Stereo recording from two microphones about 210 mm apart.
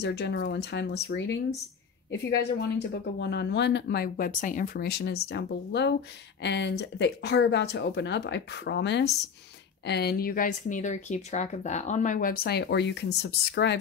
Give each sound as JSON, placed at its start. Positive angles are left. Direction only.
{"t": 0.0, "sound": "speech", "side_deg": 50}